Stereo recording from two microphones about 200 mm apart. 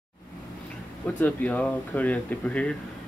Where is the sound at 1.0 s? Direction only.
5° left (ahead or behind).